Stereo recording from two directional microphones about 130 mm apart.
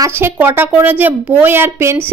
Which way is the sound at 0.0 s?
20° right (ahead or behind).